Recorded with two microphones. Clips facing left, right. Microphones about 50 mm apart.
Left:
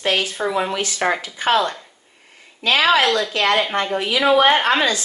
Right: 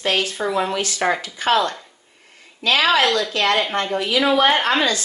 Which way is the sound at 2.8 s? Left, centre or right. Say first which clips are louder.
Left 1 dB; centre.